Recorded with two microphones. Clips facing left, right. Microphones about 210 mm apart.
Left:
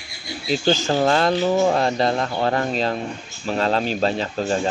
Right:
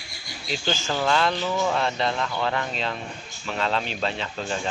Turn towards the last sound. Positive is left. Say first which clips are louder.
# left 7 dB
turn(degrees=40)  # may be behind; listen again after turning